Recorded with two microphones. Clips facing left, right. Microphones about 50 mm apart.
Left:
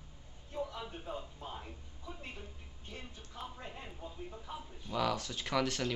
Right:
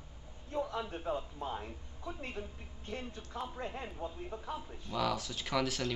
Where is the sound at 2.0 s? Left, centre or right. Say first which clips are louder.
Right 6 dB; right.